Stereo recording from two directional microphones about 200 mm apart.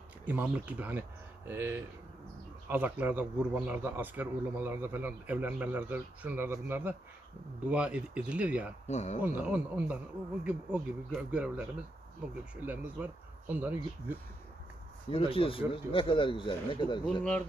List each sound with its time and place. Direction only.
0.3 s speech: 5° right (ahead or behind)
8.8 s speech: 35° left (ahead or behind)
9.2 s speech: 5° right (ahead or behind)
15.0 s speech: 25° left (ahead or behind)